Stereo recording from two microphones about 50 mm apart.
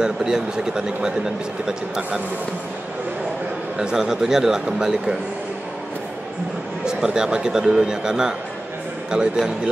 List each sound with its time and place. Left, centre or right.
0.0 s speech: centre
3.7 s speech: centre
6.9 s speech: centre